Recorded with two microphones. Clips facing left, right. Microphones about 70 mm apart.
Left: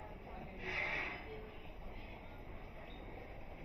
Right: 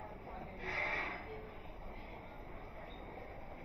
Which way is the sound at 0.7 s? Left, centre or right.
Right.